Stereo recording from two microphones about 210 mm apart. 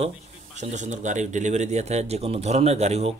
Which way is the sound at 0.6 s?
35° right (ahead or behind).